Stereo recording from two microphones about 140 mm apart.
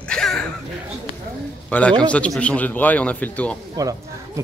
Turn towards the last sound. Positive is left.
turn(degrees=-25)  # may be behind; listen again after turning